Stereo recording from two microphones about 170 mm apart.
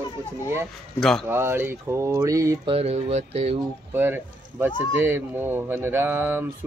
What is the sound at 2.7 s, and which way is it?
Speech, 35° right (ahead or behind).